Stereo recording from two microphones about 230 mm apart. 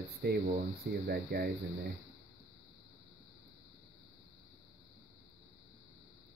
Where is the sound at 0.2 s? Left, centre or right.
Right.